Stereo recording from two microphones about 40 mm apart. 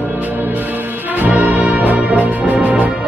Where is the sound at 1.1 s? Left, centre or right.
Right.